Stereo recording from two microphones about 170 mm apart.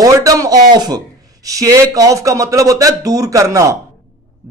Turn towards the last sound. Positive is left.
turn(degrees=-20)  # may be behind; listen again after turning